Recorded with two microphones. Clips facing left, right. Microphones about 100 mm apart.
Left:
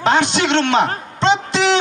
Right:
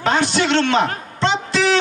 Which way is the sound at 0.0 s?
20° left (ahead or behind).